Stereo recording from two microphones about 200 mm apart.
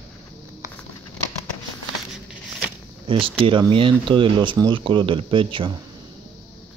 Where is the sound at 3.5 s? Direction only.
25° right (ahead or behind).